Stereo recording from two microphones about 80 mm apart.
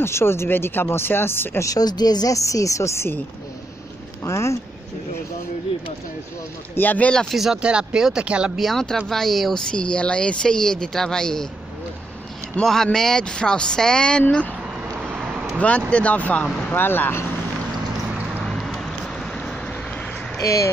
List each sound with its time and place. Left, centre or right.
0.0 s speech: left
1.6 s speech: left
4.2 s speech: left
6.7 s speech: left
7.2 s speech: centre
8.5 s speech: centre
12.6 s speech: centre
15.6 s speech: centre
18.4 s vehicle: centre
20.3 s speech: left